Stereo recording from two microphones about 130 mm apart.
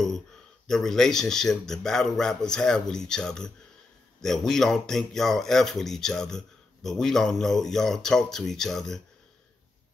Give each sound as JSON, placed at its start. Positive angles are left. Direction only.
{"t": 0.7, "sound": "speech", "side_deg": 5}